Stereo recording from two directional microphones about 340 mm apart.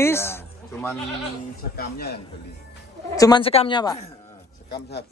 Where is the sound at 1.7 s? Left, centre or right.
Left.